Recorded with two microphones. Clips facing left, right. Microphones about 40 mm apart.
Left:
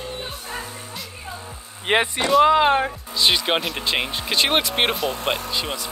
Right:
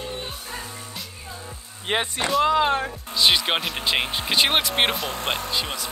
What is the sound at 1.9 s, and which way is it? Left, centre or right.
Speech, left.